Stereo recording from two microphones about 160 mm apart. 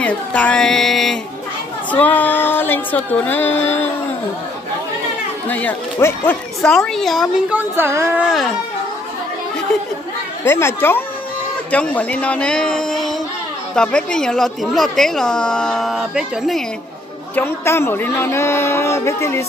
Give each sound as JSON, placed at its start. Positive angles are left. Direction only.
{"t": 0.0, "sound": "a man's voice", "side_deg": 10}
{"t": 5.5, "sound": "speech", "side_deg": 10}
{"t": 10.4, "sound": "a man's voice", "side_deg": 15}
{"t": 17.4, "sound": "a man's voice", "side_deg": 15}